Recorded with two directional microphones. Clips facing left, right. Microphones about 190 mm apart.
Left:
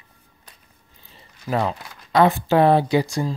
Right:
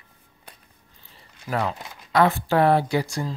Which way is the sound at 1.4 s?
25° left (ahead or behind).